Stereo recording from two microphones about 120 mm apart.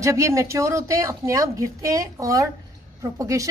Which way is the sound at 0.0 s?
25° right (ahead or behind).